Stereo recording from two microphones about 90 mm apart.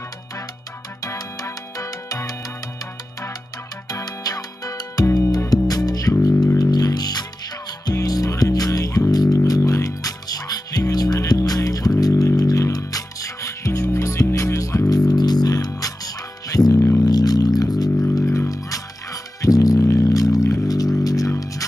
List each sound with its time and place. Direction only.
1.0 s music: 40° left (ahead or behind)
3.9 s music: 45° left (ahead or behind)
17.0 s music: 45° left (ahead or behind)
18.1 s music: 35° left (ahead or behind)